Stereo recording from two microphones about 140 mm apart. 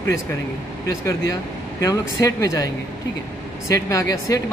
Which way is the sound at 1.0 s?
20° left (ahead or behind).